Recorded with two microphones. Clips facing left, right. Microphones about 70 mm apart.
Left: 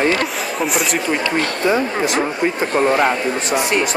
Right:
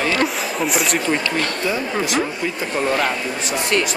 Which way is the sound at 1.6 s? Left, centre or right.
Left.